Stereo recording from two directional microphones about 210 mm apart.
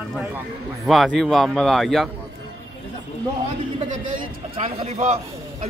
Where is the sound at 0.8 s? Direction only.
Centre (ahead or behind).